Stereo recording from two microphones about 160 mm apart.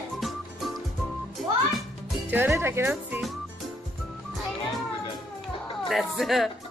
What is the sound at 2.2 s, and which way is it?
Speech, 10° right (ahead or behind).